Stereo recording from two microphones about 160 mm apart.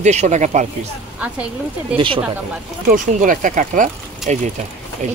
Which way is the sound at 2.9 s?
55° right (ahead or behind).